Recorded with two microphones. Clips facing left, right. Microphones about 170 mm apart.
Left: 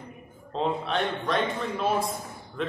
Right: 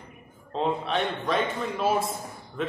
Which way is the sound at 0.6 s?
Centre (ahead or behind).